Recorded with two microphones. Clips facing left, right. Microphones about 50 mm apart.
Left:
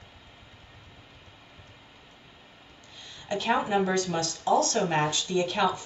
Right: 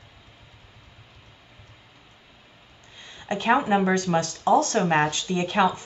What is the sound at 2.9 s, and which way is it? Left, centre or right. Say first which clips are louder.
Speech: right 2 dB; right.